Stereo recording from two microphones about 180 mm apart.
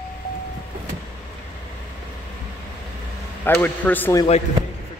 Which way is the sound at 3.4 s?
10° left (ahead or behind).